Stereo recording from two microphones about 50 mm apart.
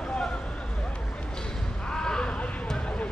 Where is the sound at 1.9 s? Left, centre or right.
Centre.